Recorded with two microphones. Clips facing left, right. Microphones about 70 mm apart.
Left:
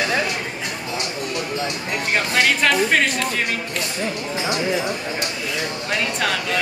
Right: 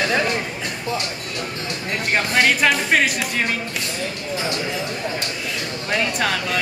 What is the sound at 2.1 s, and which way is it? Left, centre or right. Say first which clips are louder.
Speech: right 1 dB; centre.